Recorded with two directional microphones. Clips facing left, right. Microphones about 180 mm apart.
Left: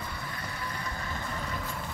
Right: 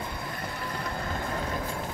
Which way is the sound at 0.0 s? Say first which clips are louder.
Right 4 dB; 50° right (ahead or behind).